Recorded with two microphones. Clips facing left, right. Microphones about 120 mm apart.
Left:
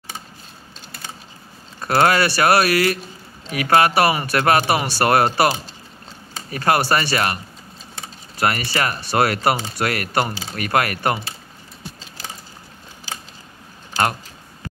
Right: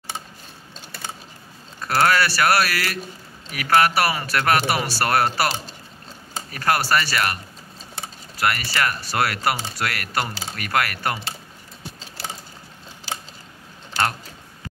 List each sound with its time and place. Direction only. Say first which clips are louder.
1.8 s speech: left 3 dB; 20° left (ahead or behind)
8.4 s speech: left 2 dB; 25° left (ahead or behind)